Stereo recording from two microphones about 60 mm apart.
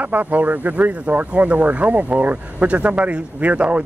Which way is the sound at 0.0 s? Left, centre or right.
Right.